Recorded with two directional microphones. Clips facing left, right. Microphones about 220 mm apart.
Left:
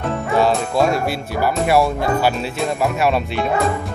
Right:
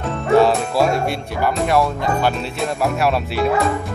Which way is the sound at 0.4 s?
Centre (ahead or behind).